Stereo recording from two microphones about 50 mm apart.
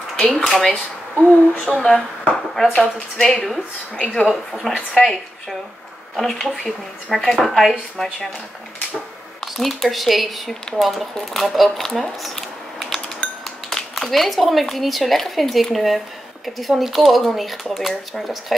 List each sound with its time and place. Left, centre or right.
0.2 s speech: centre
1.7 s speech: centre
2.2 s a sound: centre
2.8 s speech: centre
3.9 s a woman's voice: centre
4.5 s speech: centre
7.2 s speech: centre
9.4 s a woman's voice: centre